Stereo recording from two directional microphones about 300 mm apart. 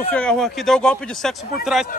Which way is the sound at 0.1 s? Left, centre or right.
Centre.